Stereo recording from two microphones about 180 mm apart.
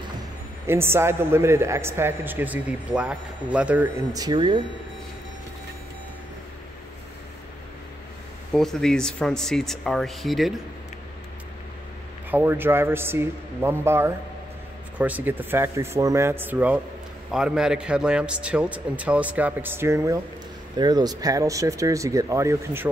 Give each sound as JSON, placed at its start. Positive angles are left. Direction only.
{"t": 0.7, "sound": "a man's voice", "side_deg": -15}
{"t": 8.5, "sound": "speech", "side_deg": 0}
{"t": 12.3, "sound": "a man's voice", "side_deg": -10}